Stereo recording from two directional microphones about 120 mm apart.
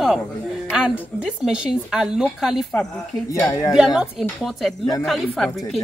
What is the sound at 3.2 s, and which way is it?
Speech, 25° left (ahead or behind).